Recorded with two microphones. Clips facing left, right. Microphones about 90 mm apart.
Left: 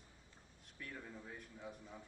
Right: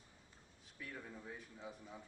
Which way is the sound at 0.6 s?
Centre (ahead or behind).